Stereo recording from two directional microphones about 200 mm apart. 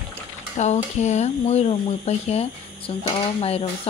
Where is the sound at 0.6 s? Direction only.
35° left (ahead or behind).